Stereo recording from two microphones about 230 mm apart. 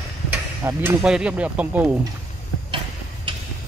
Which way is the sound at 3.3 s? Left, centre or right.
Right.